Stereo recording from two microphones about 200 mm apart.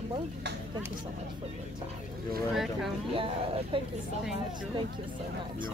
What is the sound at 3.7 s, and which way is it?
Speech, 25° right (ahead or behind).